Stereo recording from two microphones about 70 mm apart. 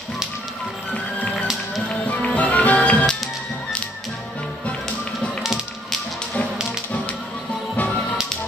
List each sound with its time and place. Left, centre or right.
0.9 s music: centre
7.7 s music: left